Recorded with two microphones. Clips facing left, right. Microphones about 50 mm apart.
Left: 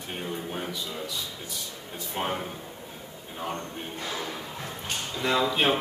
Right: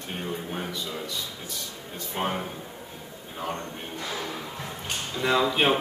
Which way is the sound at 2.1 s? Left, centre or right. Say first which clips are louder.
Right 1 dB; centre.